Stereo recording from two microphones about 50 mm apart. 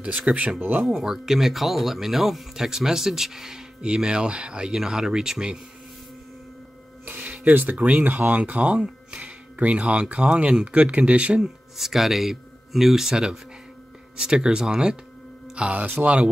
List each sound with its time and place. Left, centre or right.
0.2 s speech: right
0.7 s speech: centre
7.1 s music: right
7.4 s speech: right
8.2 s speech: right
11.4 s speech: centre
15.5 s speech: right